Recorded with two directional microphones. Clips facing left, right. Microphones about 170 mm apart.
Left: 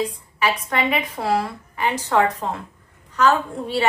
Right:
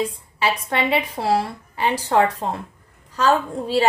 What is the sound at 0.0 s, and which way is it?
A woman's voice, 25° right (ahead or behind).